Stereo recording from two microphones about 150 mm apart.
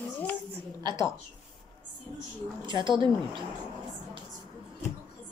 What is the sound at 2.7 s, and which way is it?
Speech, 30° right (ahead or behind).